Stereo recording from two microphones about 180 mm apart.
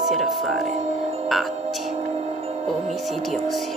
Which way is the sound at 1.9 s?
35° right (ahead or behind).